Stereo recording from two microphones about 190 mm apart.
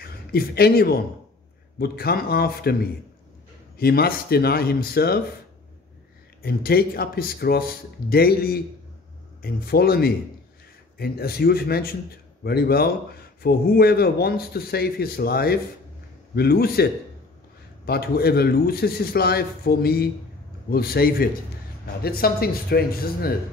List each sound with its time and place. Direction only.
0.0 s a man's voice: 55° left (ahead or behind)
3.7 s a man's voice: 55° left (ahead or behind)
6.4 s a man's voice: 55° left (ahead or behind)